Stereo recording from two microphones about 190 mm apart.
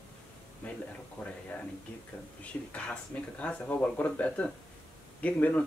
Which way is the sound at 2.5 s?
10° left (ahead or behind).